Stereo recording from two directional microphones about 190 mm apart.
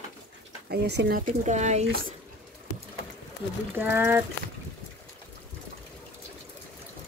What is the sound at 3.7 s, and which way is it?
Speech, 10° right (ahead or behind).